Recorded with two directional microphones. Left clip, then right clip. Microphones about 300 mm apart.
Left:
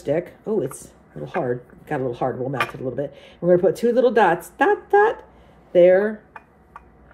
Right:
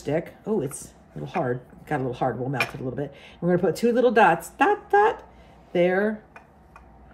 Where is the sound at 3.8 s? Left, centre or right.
Right.